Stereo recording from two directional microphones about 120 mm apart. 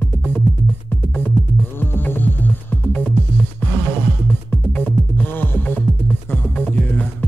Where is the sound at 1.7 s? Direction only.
15° left (ahead or behind).